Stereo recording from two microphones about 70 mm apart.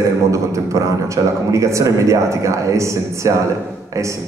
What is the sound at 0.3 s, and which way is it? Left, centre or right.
A man's voice, right.